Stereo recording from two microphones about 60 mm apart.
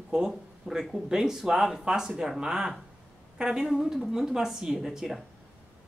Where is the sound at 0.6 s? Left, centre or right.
Centre.